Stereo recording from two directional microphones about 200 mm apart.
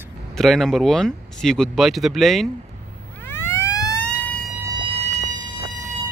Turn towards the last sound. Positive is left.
turn(degrees=-40)  # may be behind; listen again after turning